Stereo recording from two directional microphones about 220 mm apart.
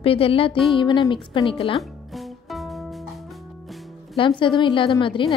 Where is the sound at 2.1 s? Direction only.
Centre (ahead or behind).